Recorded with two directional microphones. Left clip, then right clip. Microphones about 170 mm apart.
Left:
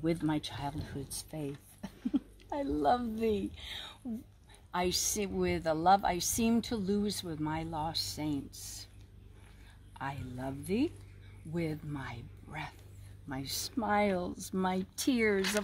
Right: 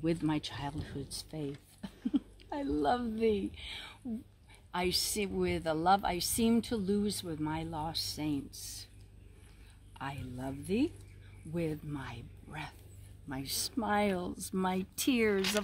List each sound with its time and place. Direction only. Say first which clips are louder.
0.3 s speech: left 1 dB; 10° left (ahead or behind)
4.6 s a woman's voice: left 1 dB; 15° left (ahead or behind)
9.9 s a woman's voice: left 2 dB; 10° left (ahead or behind)